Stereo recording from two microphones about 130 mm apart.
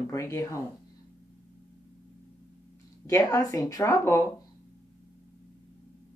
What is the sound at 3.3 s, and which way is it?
Speech, 25° left (ahead or behind).